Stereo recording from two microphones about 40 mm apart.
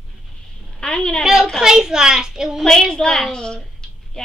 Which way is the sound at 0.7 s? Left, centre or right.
Centre.